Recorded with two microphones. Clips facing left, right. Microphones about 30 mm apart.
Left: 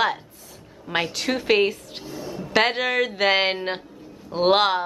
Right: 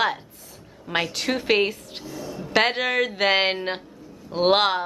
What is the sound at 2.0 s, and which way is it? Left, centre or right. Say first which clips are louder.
Speech: even; left.